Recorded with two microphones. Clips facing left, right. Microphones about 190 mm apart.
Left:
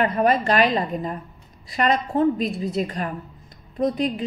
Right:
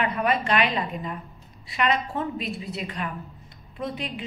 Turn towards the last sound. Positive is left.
turn(degrees=40)  # may be behind; listen again after turning